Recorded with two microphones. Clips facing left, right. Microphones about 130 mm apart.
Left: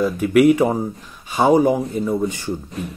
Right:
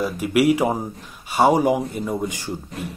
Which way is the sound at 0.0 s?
5° right (ahead or behind).